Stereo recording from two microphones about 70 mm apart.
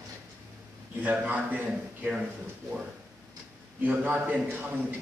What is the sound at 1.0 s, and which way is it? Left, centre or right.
Speech, right.